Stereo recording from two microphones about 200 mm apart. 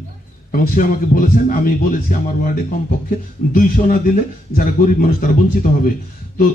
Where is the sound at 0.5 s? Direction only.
45° left (ahead or behind).